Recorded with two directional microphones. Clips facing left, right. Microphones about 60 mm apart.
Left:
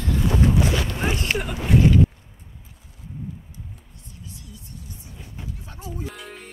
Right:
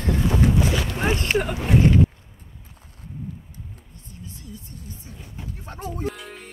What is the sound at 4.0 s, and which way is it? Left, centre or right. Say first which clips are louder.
Music: right 3 dB; right.